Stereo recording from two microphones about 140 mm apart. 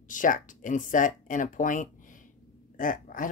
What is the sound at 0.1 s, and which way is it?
Speech, 70° left (ahead or behind).